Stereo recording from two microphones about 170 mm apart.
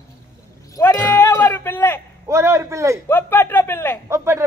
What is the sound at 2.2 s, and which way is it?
Speech, 15° right (ahead or behind).